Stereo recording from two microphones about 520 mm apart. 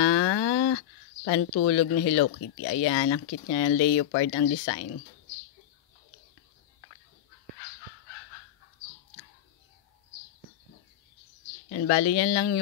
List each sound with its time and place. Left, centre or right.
0.0 s a sound: left
1.2 s speech: left
11.7 s speech: left